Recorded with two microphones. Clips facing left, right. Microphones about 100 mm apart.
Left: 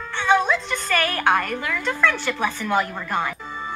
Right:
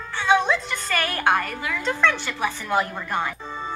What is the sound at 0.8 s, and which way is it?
A woman's voice, 20° right (ahead or behind).